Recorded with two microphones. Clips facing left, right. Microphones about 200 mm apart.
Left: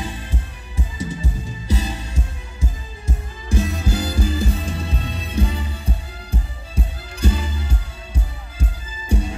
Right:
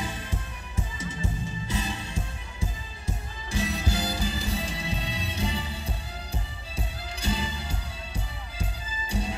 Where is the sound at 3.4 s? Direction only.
50° left (ahead or behind).